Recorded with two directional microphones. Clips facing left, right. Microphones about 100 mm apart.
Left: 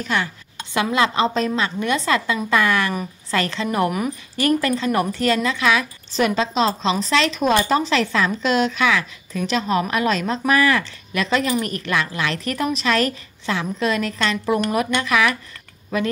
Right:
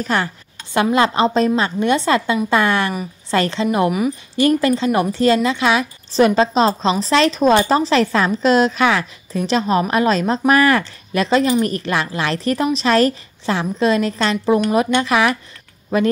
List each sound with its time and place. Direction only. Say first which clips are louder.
0.0 s a woman's voice: right 3 dB; 40° right (ahead or behind)